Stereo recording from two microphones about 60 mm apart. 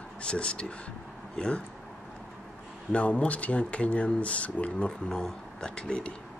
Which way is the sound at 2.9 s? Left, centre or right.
Left.